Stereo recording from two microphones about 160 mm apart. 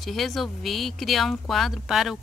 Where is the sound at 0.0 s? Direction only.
Centre (ahead or behind).